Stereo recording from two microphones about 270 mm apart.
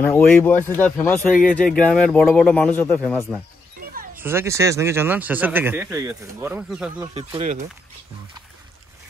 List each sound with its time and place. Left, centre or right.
0.0 s speech: centre
3.8 s a sound: right
4.2 s speech: centre
7.2 s speech: right